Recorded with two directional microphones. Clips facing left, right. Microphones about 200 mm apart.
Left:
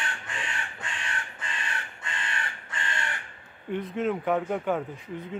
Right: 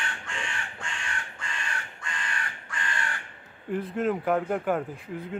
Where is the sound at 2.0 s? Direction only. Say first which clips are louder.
Even; 25° left (ahead or behind).